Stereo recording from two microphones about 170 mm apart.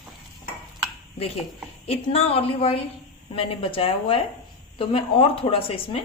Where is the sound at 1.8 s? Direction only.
35° left (ahead or behind).